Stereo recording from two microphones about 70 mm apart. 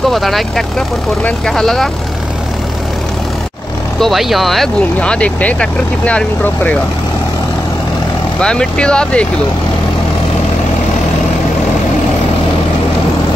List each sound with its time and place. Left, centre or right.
0.1 s speech: centre
4.0 s speech: centre
5.0 s speech: centre
8.4 s speech: centre